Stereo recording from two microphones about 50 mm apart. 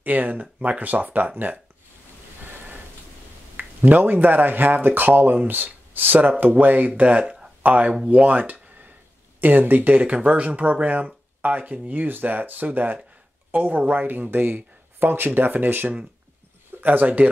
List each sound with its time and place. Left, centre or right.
0.0 s speech: right
3.5 s speech: right